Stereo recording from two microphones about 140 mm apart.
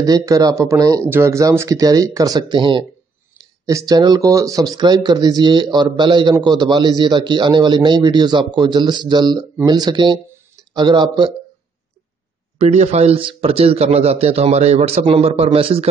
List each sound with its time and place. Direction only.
0.0 s speech: 25° right (ahead or behind)
3.6 s a man's voice: 25° right (ahead or behind)
12.5 s a man's voice: 55° right (ahead or behind)